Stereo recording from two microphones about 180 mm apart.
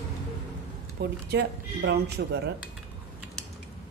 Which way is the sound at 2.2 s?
80° right.